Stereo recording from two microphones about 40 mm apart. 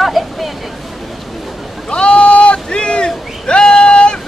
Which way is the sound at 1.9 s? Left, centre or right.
Left.